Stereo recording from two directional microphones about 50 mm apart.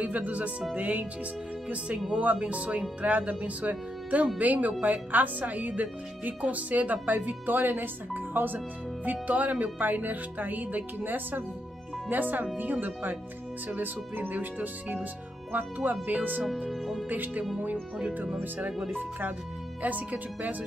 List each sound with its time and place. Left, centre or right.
0.0 s music: right
0.7 s speech: right
1.7 s music: right
3.0 s speech: right
16.6 s speech: centre
17.1 s speech: right